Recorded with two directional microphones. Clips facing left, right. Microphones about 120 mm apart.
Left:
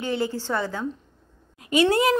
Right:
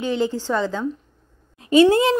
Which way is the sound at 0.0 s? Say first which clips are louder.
Right 4 dB; 15° right (ahead or behind).